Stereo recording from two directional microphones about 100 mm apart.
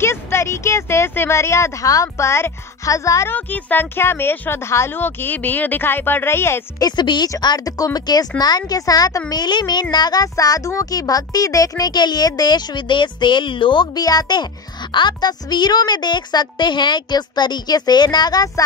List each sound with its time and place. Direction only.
0.0 s speech: 25° left (ahead or behind)
3.3 s speech: 15° left (ahead or behind)
6.8 s a child's voice: 45° left (ahead or behind)